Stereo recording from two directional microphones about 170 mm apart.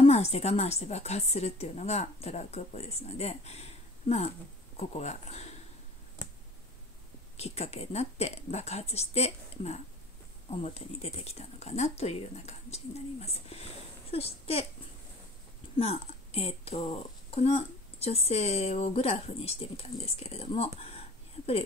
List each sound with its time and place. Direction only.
0.0 s speech: 40° left (ahead or behind)
7.3 s speech: 40° left (ahead or behind)
15.7 s speech: 35° left (ahead or behind)